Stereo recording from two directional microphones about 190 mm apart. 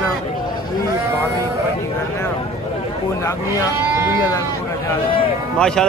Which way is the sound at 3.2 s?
15° left (ahead or behind).